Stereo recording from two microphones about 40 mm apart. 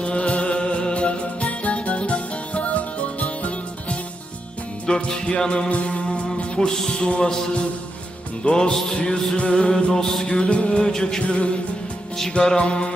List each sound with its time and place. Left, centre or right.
0.0 s music: left
4.8 s music: centre
8.5 s music: left
9.9 s music: centre
10.8 s music: centre
11.2 s music: left
12.5 s music: left